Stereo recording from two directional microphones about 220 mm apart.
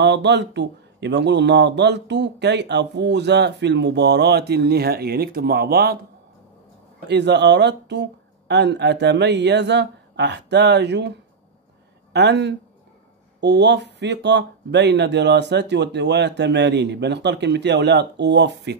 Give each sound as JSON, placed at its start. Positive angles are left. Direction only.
{"t": 0.0, "sound": "speech", "side_deg": -50}
{"t": 7.1, "sound": "speech", "side_deg": -50}